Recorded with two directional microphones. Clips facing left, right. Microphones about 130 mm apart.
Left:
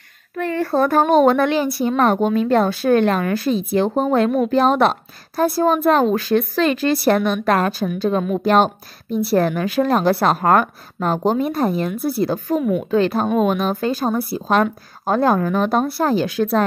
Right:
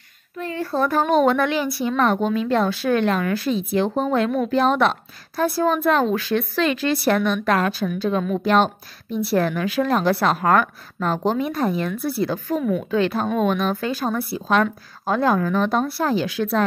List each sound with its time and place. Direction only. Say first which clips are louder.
0.4 s a child's voice: left 5 dB; 65° left (ahead or behind); by 12.5 s 40° left (ahead or behind)
12.5 s speech: left 3 dB; 15° left (ahead or behind)
12.9 s a woman's voice: left 5 dB; 40° left (ahead or behind)